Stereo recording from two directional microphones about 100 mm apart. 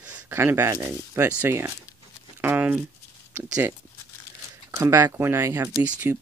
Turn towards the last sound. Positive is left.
turn(degrees=-25)  # may be behind; listen again after turning